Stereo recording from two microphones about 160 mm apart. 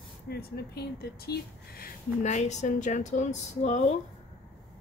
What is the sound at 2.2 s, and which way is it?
A woman's voice, 45° left (ahead or behind).